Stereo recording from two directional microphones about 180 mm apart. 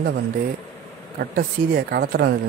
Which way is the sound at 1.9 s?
60° right (ahead or behind).